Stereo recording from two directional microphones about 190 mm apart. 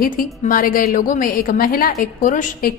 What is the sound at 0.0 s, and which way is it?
A woman's voice, 50° left (ahead or behind).